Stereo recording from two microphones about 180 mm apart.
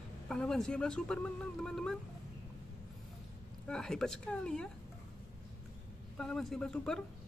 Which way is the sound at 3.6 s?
5° left (ahead or behind).